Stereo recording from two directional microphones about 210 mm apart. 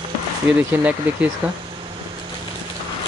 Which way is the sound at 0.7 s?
5° right (ahead or behind).